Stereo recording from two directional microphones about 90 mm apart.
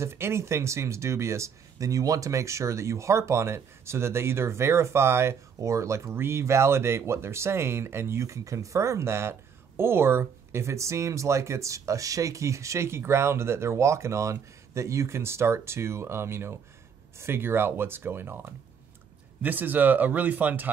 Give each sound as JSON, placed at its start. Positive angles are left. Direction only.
{"t": 0.0, "sound": "speech", "side_deg": -30}